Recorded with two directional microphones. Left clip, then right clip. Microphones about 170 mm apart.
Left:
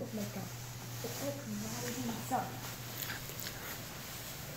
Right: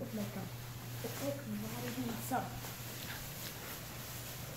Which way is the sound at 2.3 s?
20° right (ahead or behind).